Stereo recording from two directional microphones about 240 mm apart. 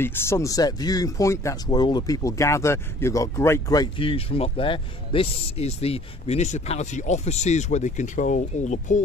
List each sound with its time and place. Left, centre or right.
0.0 s speech: centre; by 9.0 s left